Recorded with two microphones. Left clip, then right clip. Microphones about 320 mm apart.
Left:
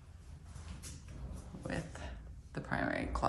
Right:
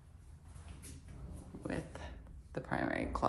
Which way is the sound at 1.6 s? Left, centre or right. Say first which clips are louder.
Even; centre.